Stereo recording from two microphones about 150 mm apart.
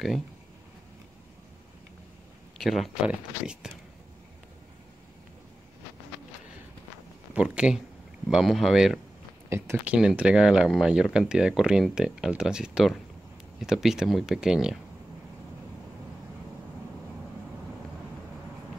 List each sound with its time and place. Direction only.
2.6 s speech: centre (ahead or behind)
7.3 s speech: 5° right (ahead or behind)
9.5 s speech: 15° right (ahead or behind)
9.9 s speech: 5° right (ahead or behind)